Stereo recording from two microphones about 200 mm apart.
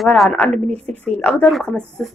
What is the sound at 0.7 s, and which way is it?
Speech, 30° right (ahead or behind).